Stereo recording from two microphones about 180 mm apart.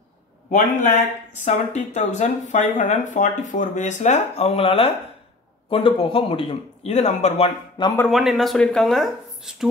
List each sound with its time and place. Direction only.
0.9 s speech: 40° left (ahead or behind)
8.1 s speech: centre (ahead or behind)